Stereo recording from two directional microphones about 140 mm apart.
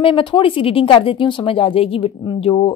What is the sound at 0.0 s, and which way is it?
A woman's voice, 35° left (ahead or behind).